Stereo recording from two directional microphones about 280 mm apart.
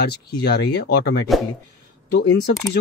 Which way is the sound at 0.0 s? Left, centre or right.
Left.